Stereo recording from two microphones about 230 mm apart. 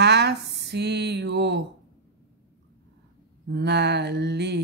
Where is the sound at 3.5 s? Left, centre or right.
Right.